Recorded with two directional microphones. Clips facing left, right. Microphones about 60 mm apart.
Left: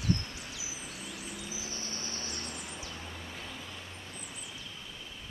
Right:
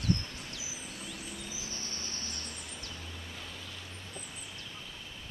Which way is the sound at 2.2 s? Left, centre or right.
Centre.